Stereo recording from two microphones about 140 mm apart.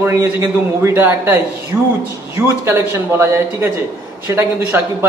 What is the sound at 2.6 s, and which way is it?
Speech, 20° right (ahead or behind).